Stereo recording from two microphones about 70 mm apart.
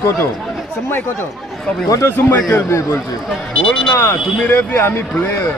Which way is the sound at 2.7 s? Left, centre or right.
Left.